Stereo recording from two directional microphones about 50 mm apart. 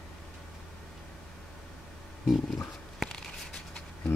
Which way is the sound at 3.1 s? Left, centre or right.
Centre.